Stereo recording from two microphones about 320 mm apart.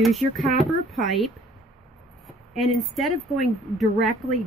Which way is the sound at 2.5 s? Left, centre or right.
Centre.